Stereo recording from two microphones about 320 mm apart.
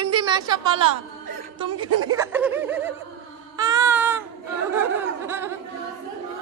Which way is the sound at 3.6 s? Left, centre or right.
Centre.